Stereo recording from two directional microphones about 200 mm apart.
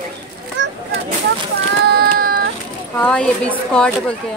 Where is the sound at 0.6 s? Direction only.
65° right (ahead or behind).